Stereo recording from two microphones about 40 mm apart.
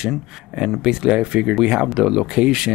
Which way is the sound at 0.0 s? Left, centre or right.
Centre.